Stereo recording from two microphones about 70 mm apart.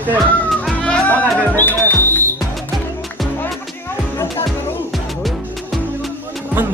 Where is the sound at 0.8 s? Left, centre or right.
Centre.